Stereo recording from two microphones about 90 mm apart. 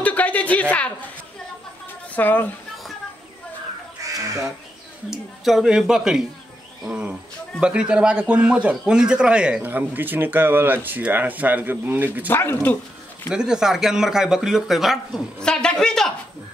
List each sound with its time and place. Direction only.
0.0 s a sound: 15° left (ahead or behind)
2.1 s speech: 20° left (ahead or behind)
4.0 s crow: 35° right (ahead or behind)
5.1 s a man's voice: 5° right (ahead or behind)
6.9 s a man's voice: 15° right (ahead or behind)
9.6 s speech: 20° right (ahead or behind)
12.3 s speech: 25° left (ahead or behind)
13.3 s speech: 10° right (ahead or behind)
15.3 s a woman's voice: 10° left (ahead or behind)